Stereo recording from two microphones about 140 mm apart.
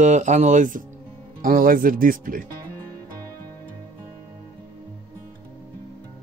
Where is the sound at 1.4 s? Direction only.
90° right.